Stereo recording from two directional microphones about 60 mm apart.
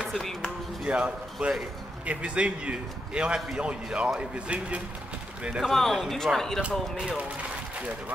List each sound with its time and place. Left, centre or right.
0.0 s speech: centre
0.8 s a man's voice: centre
5.6 s speech: centre